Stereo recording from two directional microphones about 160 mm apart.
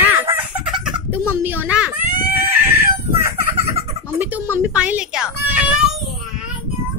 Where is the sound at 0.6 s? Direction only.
5° right (ahead or behind).